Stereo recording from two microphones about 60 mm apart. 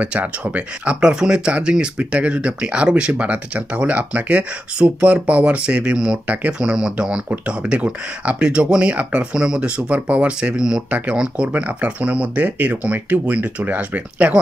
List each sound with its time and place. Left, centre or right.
0.0 s speech: right